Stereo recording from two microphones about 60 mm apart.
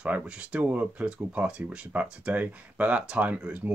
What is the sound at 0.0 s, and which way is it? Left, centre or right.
Speech, centre.